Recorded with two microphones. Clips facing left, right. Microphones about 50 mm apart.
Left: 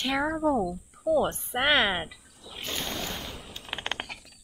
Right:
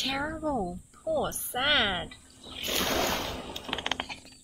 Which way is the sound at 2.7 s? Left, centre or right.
Right.